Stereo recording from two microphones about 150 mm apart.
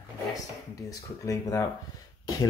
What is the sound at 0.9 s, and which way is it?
Speech, 25° left (ahead or behind).